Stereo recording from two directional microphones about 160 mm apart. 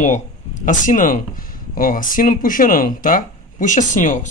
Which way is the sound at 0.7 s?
55° left (ahead or behind).